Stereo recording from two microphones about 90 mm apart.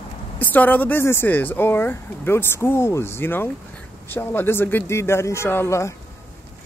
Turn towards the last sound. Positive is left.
turn(degrees=30)  # may be behind; listen again after turning